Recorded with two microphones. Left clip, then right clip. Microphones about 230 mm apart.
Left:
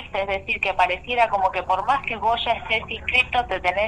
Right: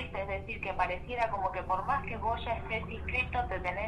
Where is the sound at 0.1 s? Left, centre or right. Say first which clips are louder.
Left 17 dB; left.